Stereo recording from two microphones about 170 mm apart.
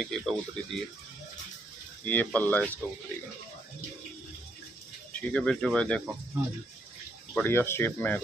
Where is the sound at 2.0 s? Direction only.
10° left (ahead or behind).